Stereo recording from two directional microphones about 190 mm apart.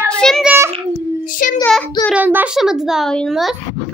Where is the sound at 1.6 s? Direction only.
5° left (ahead or behind).